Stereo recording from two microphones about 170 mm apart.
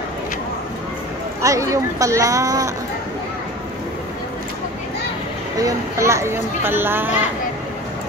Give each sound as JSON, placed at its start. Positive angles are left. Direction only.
{"t": 1.4, "sound": "speech", "side_deg": -20}
{"t": 5.6, "sound": "speech", "side_deg": -20}